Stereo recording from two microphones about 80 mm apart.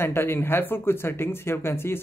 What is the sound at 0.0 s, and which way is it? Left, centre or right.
Speech, left.